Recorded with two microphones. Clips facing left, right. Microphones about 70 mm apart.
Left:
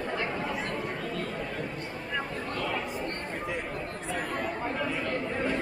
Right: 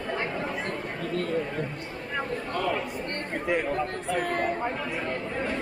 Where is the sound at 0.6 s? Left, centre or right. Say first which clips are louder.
Right 1 dB; right.